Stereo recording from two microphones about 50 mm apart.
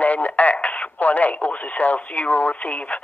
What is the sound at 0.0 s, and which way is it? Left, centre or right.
Speech, left.